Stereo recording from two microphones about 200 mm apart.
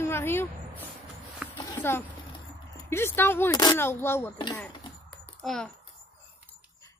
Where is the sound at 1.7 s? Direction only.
10° left (ahead or behind).